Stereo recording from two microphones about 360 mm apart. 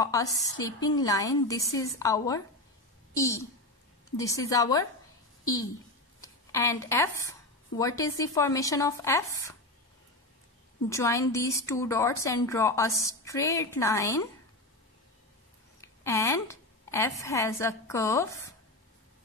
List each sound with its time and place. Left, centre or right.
0.0 s a woman's voice: centre
10.9 s a woman's voice: centre
15.8 s a woman's voice: centre